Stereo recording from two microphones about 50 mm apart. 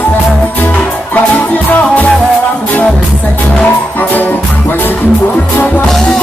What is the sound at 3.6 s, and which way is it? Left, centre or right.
Music, left.